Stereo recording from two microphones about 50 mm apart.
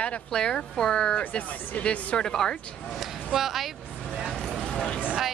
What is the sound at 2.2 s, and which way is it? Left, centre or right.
Speech, centre.